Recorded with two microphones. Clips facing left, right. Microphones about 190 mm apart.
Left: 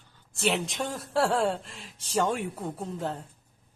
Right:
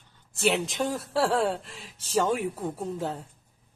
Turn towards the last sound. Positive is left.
turn(degrees=0)  # may be behind; listen again after turning